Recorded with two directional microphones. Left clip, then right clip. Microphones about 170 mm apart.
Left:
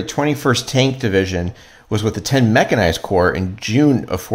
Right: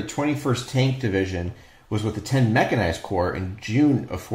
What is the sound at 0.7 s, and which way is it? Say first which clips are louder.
Speech: left 8 dB; 35° left (ahead or behind).